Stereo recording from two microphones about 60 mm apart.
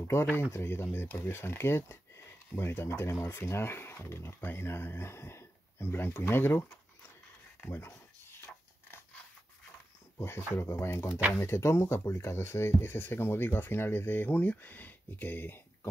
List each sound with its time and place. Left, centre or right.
0.1 s speech: left
10.1 s speech: left